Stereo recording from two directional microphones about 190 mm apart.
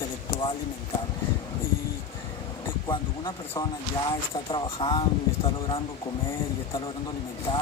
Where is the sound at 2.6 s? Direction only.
15° left (ahead or behind).